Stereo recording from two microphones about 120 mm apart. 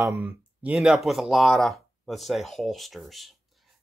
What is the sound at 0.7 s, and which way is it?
Speech, centre (ahead or behind).